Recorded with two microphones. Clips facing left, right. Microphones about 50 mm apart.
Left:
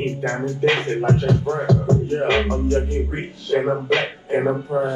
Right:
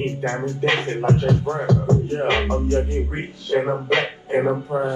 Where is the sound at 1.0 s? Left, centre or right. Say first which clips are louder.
Right 1 dB; right.